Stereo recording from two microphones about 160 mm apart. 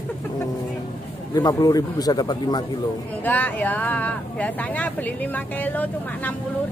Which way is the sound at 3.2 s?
10° left (ahead or behind).